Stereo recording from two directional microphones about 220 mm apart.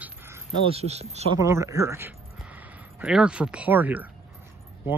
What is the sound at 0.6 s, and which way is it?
Speech, 30° right (ahead or behind).